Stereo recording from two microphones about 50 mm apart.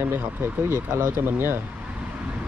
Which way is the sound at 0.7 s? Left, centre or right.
Right.